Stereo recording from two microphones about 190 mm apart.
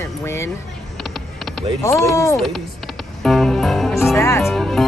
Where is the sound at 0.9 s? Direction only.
Centre (ahead or behind).